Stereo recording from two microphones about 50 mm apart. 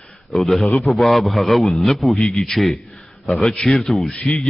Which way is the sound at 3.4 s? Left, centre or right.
Centre.